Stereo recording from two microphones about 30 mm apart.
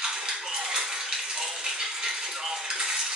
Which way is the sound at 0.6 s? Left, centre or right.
Right.